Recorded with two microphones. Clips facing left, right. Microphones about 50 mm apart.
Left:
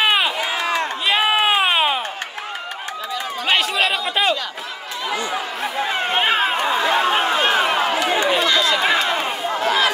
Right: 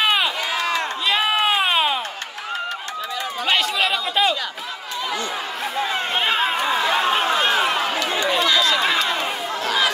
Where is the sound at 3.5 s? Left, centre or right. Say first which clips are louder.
Left 2 dB; centre.